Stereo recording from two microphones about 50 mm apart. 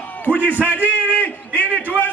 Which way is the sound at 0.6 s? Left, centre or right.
Right.